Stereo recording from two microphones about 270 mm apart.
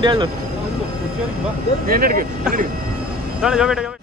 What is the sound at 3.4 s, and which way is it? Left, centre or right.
Speech, centre.